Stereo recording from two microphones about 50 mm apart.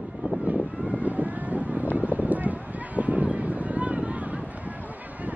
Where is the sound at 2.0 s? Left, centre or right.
Right.